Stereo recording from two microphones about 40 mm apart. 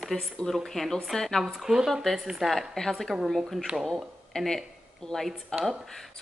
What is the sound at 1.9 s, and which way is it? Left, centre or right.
Speech, centre.